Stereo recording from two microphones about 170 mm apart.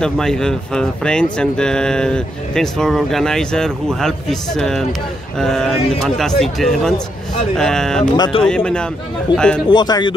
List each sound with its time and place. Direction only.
0.0 s speech: 5° left (ahead or behind)
8.2 s speech: 30° left (ahead or behind)
8.5 s speech: 5° left (ahead or behind)
9.3 s speech: 25° left (ahead or behind)